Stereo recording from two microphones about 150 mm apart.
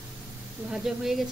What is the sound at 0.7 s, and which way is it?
Speech, centre (ahead or behind).